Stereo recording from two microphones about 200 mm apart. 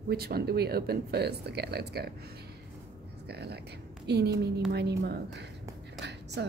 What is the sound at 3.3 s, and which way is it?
A woman's voice, 55° right (ahead or behind).